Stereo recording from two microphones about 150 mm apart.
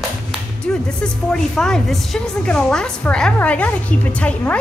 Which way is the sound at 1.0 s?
5° left (ahead or behind).